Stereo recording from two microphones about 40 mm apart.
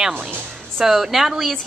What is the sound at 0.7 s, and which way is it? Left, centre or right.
Speech, centre.